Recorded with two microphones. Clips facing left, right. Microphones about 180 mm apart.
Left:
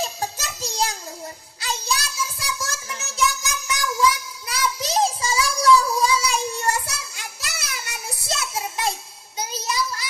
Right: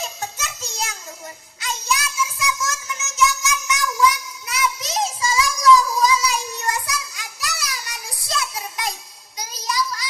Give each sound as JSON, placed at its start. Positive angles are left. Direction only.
{"t": 0.0, "sound": "music", "side_deg": 30}
{"t": 9.4, "sound": "child singing", "side_deg": 25}